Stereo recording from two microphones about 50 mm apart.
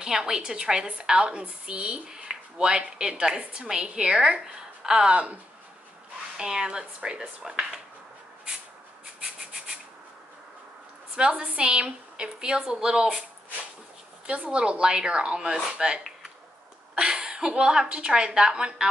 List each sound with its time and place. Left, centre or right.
0.0 s a woman's voice: centre
5.1 s a woman's voice: right
6.3 s a woman's voice: centre
9.2 s rub: centre
11.1 s a woman's voice: centre
14.2 s a woman's voice: right